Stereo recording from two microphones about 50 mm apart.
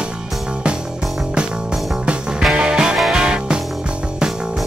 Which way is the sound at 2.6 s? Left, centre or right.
Centre.